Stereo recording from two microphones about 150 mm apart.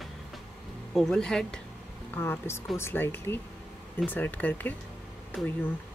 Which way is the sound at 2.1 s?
15° left (ahead or behind).